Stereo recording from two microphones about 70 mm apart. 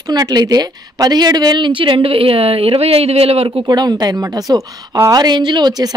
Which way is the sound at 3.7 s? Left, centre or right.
Right.